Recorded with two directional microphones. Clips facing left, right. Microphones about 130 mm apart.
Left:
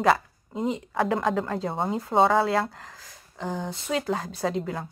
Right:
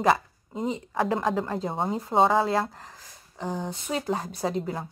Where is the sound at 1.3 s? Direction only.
30° right (ahead or behind).